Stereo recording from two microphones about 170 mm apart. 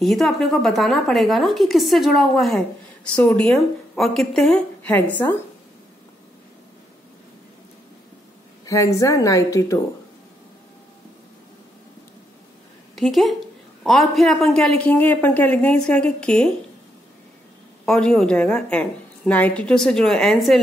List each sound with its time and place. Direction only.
0.0 s speech: centre (ahead or behind)
8.6 s a woman's voice: 20° left (ahead or behind)
12.9 s speech: centre (ahead or behind)
17.8 s speech: centre (ahead or behind)